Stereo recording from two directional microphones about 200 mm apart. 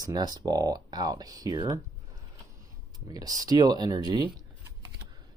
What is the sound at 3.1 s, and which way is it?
Speech, 20° right (ahead or behind).